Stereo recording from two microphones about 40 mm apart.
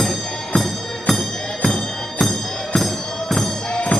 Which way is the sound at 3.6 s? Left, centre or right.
Left.